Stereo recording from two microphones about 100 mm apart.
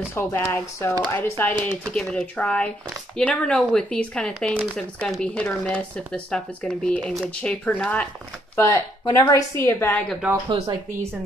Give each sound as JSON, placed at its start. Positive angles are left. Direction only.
{"t": 0.1, "sound": "a woman's voice", "side_deg": 25}
{"t": 2.0, "sound": "speech", "side_deg": 10}
{"t": 8.5, "sound": "a woman's voice", "side_deg": 30}